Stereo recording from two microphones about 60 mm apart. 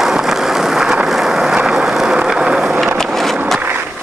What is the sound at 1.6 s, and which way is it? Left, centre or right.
Vehicle, centre.